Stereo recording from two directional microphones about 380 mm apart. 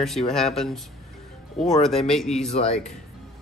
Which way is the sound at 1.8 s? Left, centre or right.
Centre.